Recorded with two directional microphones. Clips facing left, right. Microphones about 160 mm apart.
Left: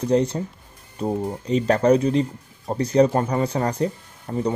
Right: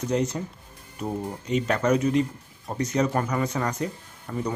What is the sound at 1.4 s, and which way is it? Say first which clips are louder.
Speech: left 5 dB; 35° left (ahead or behind).